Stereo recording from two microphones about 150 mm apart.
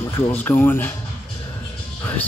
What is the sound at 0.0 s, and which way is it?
Speech, 15° left (ahead or behind).